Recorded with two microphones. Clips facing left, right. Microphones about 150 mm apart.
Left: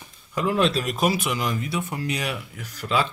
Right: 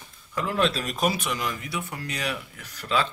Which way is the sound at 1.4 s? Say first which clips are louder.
Left 4 dB; 20° left (ahead or behind).